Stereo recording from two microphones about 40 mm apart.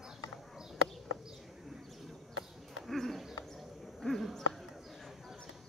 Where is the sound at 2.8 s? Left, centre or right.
Centre.